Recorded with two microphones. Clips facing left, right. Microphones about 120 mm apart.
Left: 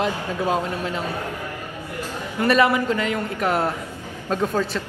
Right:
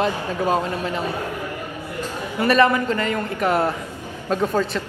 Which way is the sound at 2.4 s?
Centre (ahead or behind).